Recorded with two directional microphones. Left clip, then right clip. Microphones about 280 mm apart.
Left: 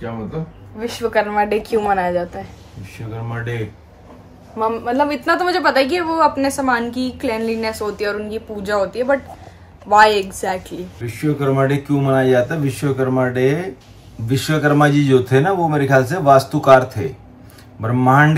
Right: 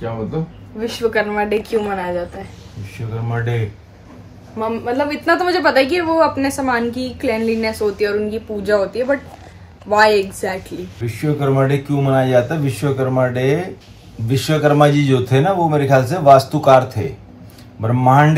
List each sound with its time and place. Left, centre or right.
0.7 s a woman's voice: centre; by 2.5 s left
4.6 s a woman's voice: centre
11.1 s speech: centre